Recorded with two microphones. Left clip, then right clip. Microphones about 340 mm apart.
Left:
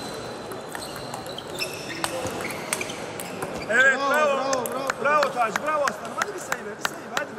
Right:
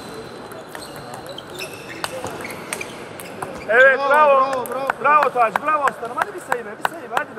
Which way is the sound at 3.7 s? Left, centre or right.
Centre.